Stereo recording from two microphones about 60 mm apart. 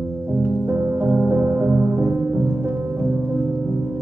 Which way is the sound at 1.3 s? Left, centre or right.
Right.